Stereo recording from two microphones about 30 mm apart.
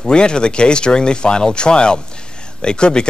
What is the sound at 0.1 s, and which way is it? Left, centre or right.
Speech, left.